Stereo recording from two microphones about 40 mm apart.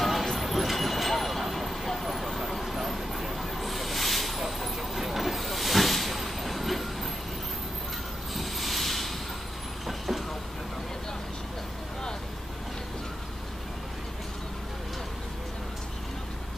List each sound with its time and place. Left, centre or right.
0.0 s vehicle: centre
8.4 s a sound: centre
9.8 s vehicle: centre